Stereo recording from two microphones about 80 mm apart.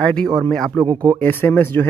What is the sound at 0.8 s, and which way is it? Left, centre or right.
Speech, right.